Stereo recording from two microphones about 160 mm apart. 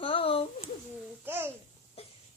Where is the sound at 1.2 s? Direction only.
15° right (ahead or behind).